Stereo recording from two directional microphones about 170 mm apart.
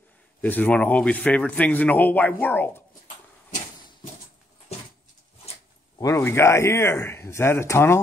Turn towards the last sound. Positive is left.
turn(degrees=15)  # may be behind; listen again after turning